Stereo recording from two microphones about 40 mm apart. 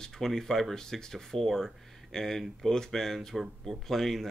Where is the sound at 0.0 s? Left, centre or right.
Centre.